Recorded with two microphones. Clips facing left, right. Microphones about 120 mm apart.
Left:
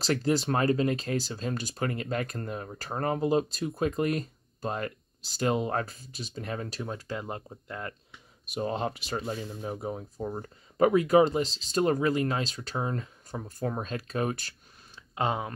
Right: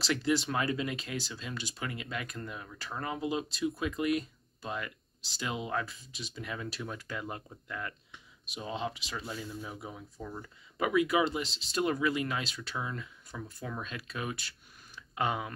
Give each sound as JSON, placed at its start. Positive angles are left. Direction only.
{"t": 0.0, "sound": "speech", "side_deg": 40}
{"t": 8.5, "sound": "speech", "side_deg": 50}
{"t": 15.1, "sound": "speech", "side_deg": 30}